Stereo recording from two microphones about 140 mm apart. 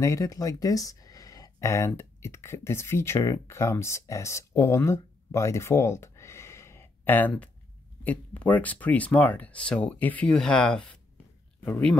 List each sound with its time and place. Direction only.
0.0 s speech: 25° left (ahead or behind); by 12.0 s 10° left (ahead or behind)